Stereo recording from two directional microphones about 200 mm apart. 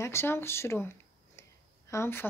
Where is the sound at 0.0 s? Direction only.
15° left (ahead or behind).